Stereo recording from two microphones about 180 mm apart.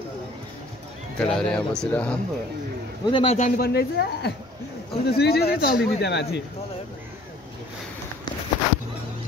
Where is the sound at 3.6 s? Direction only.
60° left (ahead or behind).